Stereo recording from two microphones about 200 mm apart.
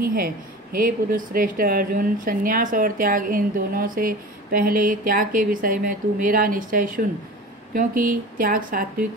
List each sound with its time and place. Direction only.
0.0 s speech: 45° right (ahead or behind)